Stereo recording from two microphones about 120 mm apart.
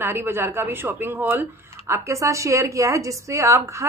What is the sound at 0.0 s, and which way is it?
A woman's voice, 20° right (ahead or behind).